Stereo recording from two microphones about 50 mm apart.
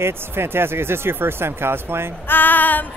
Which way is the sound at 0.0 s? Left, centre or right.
Right.